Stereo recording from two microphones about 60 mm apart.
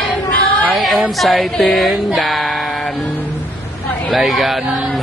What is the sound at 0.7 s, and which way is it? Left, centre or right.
A woman's voice, centre.